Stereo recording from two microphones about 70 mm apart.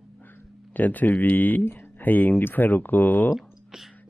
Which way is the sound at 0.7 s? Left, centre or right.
Left.